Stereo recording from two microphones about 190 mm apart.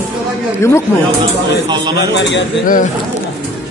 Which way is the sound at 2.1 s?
70° left (ahead or behind).